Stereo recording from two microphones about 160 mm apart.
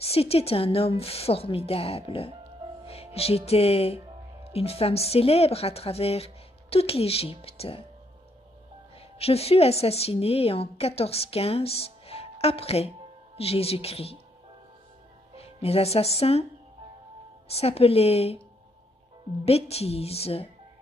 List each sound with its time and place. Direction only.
0.0 s a woman's voice: 40° left (ahead or behind)
2.9 s music: 40° left (ahead or behind)
4.5 s a woman's voice: 40° left (ahead or behind)
9.2 s a woman's voice: 40° left (ahead or behind)
15.3 s speech: 40° left (ahead or behind)
17.6 s a woman's voice: 40° left (ahead or behind)
19.4 s a woman's voice: 40° left (ahead or behind)